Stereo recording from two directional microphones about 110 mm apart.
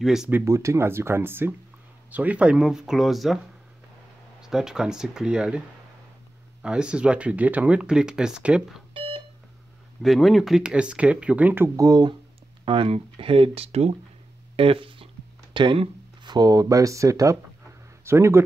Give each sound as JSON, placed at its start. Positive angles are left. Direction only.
{"t": 0.0, "sound": "speech", "side_deg": -5}
{"t": 0.3, "sound": "speech", "side_deg": -25}
{"t": 4.4, "sound": "speech", "side_deg": -5}
{"t": 6.6, "sound": "speech", "side_deg": -10}
{"t": 8.9, "sound": "alarm clock", "side_deg": -55}
{"t": 10.0, "sound": "speech", "side_deg": 0}
{"t": 11.7, "sound": "speech", "side_deg": -35}
{"t": 14.6, "sound": "speech", "side_deg": -55}